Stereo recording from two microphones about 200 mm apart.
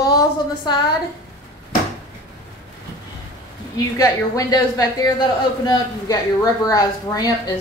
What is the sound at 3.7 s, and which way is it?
A woman's voice, 20° left (ahead or behind).